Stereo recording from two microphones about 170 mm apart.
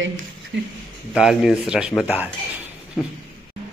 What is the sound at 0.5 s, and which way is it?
Speech, 90° right.